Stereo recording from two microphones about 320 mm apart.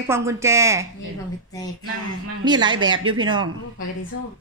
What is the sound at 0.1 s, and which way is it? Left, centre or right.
Speech, centre.